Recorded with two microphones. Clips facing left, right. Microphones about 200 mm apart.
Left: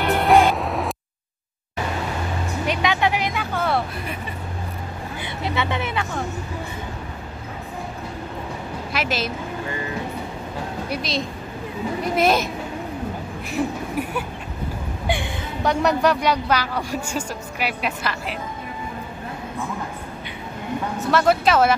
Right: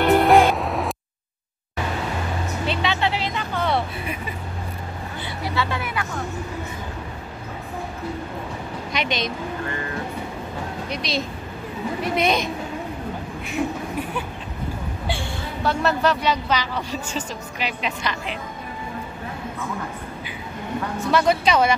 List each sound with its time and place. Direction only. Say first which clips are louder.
0.0 s music: right 2 dB; centre (ahead or behind)
2.6 s vehicle: left 2 dB; 15° left (ahead or behind)
5.2 s speech: left 1 dB; 20° left (ahead or behind)
8.9 s speech: even; 5° left (ahead or behind)
10.9 s speech: even; centre (ahead or behind)
15.0 s speech: left 4 dB; 15° left (ahead or behind)
21.0 s speech: left 1 dB; centre (ahead or behind)